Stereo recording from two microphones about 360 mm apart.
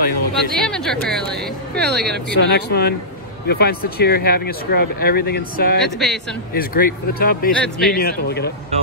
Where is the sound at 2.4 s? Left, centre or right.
Left.